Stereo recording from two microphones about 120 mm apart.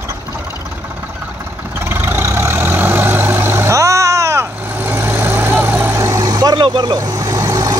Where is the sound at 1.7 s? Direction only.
20° right (ahead or behind).